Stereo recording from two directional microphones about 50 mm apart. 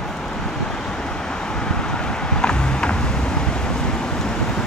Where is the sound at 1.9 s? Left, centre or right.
Centre.